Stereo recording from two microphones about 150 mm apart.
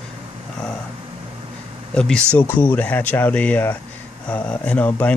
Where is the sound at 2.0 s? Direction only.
5° left (ahead or behind).